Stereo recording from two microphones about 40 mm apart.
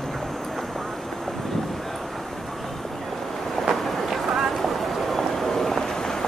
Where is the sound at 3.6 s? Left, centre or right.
Centre.